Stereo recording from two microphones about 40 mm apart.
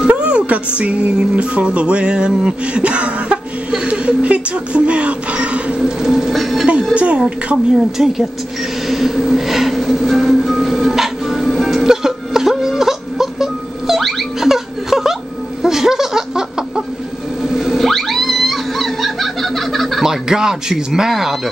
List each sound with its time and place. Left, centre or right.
0.0 s music: right
3.8 s speech: right
5.8 s speech: centre
6.3 s speech: centre
6.9 s speech: right
7.5 s speech: centre
8.8 s a sound: centre
9.9 s music: centre
14.4 s laughter: centre
15.6 s a sound: centre
17.8 s whale vocalization: centre
20.0 s speech: centre